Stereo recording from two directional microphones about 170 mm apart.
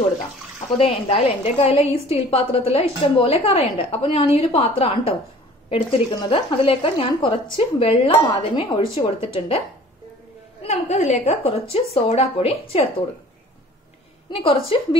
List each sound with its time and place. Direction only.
0.7 s a woman's voice: 35° left (ahead or behind)
10.6 s a woman's voice: 40° left (ahead or behind)
14.3 s a woman's voice: 35° left (ahead or behind)